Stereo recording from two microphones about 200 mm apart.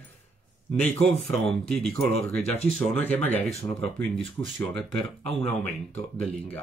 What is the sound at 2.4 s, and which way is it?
Speech, 30° left (ahead or behind).